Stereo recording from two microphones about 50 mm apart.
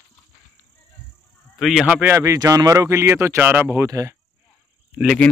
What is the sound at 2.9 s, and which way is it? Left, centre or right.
Speech, right.